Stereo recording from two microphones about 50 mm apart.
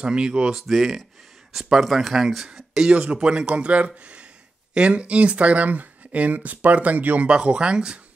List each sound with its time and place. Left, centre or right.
0.0 s speech: centre
0.6 s speech: centre
2.9 s speech: centre
7.2 s speech: centre